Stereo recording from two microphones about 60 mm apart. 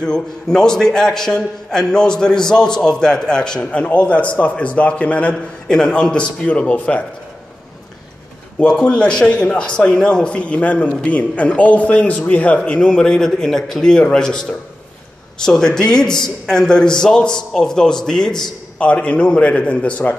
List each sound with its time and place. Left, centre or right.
0.0 s a man's voice: centre
8.5 s a man's voice: centre
18.8 s a man's voice: left